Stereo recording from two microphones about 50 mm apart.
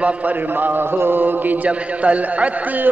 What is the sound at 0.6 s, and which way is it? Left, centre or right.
A man's voice, right.